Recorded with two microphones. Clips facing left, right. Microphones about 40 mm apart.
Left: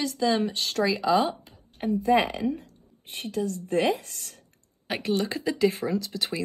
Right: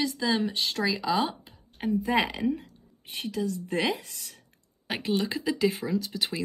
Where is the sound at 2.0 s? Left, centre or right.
Right.